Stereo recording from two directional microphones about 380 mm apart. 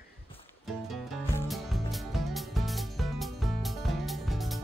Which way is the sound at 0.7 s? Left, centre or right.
Centre.